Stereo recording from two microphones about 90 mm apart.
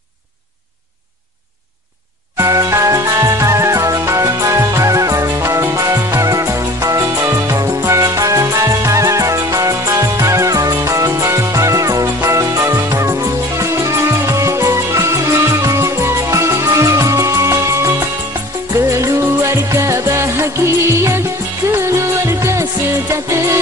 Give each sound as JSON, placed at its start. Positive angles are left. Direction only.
{"t": 2.3, "sound": "music", "side_deg": -40}